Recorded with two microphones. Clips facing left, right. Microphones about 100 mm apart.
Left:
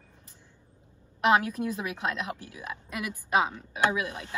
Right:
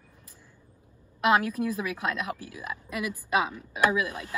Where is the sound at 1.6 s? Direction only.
30° left (ahead or behind).